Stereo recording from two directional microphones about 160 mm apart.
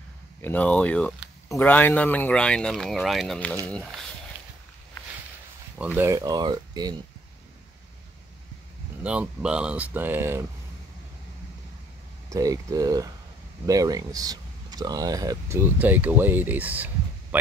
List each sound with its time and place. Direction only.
0.4 s speech: 10° left (ahead or behind)
5.9 s speech: 20° right (ahead or behind)
9.0 s speech: 5° right (ahead or behind)
12.3 s speech: 20° right (ahead or behind)